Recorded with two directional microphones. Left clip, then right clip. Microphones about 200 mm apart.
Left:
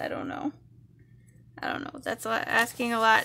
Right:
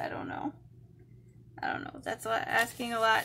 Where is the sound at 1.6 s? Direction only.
40° left (ahead or behind).